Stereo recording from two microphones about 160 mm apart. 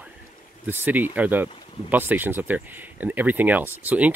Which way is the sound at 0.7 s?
15° right (ahead or behind).